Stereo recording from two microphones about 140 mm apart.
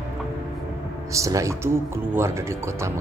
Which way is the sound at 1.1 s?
20° right (ahead or behind).